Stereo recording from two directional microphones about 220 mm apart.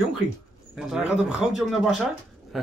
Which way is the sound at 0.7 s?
5° right (ahead or behind).